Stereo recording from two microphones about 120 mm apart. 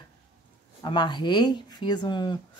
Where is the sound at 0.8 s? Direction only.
40° left (ahead or behind).